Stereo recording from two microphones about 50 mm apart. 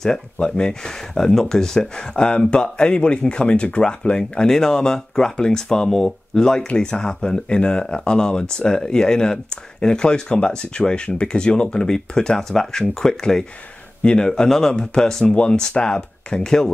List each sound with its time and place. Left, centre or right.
0.4 s speech: centre